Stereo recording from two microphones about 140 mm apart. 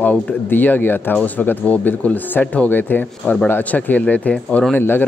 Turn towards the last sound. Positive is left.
turn(degrees=15)  # may be behind; listen again after turning